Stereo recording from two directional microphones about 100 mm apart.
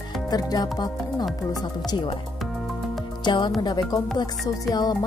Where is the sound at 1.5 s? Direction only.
40° left (ahead or behind).